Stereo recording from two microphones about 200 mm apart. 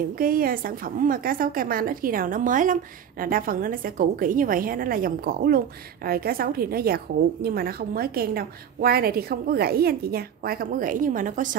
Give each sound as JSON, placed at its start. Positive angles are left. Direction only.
{"t": 0.2, "sound": "a woman's voice", "side_deg": -45}